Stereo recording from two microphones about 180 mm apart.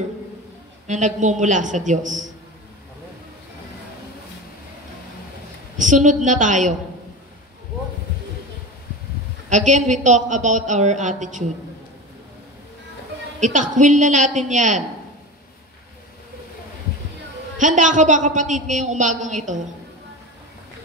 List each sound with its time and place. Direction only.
0.8 s a woman's voice: 40° right (ahead or behind)
5.8 s a woman's voice: 45° right (ahead or behind)
9.5 s a woman's voice: 45° right (ahead or behind)
13.4 s a woman's voice: 45° right (ahead or behind)
17.6 s a woman's voice: 45° right (ahead or behind)